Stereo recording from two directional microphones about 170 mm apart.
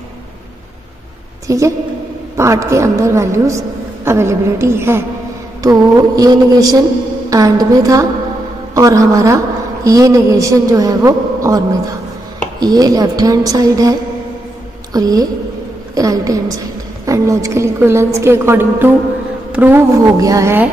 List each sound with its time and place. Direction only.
1.5 s a man's voice: 20° right (ahead or behind)